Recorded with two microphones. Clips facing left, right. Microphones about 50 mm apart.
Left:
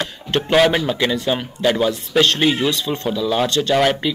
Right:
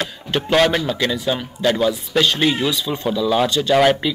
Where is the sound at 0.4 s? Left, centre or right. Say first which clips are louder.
Left 1 dB; centre.